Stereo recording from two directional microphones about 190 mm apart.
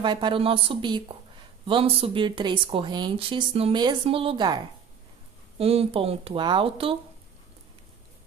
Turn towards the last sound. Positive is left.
turn(degrees=-30)  # may be behind; listen again after turning